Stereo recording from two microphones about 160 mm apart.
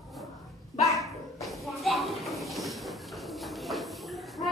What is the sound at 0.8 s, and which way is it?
Dog, 20° left (ahead or behind).